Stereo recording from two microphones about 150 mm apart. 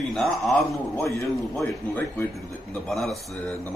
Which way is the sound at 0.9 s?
20° left (ahead or behind).